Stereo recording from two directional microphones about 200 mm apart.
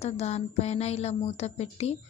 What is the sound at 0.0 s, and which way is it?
A woman's voice, 30° left (ahead or behind).